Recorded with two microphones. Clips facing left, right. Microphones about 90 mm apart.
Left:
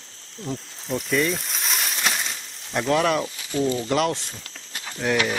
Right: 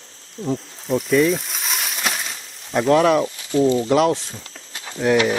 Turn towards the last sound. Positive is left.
turn(degrees=0)  # may be behind; listen again after turning